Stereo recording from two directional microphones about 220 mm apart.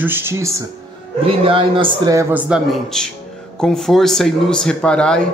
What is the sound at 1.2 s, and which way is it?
A man's voice, 25° right (ahead or behind).